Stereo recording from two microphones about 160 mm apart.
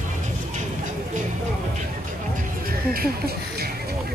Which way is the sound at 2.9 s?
70° right (ahead or behind).